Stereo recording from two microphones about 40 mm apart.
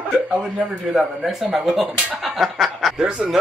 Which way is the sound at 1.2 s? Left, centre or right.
Centre.